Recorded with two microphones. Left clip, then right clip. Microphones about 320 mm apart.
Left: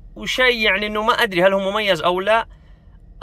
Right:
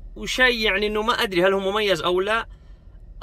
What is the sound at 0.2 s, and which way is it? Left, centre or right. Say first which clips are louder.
Speech: left 3 dB; centre.